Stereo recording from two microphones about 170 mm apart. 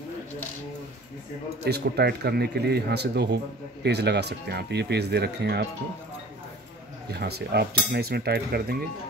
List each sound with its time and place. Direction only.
1.6 s speech: 70° right (ahead or behind)
7.1 s speech: 70° right (ahead or behind)